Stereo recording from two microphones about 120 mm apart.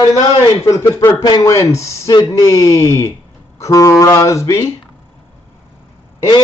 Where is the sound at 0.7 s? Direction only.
25° left (ahead or behind).